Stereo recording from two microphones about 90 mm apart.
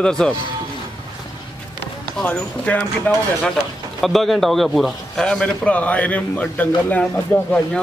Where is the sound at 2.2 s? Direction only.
15° left (ahead or behind).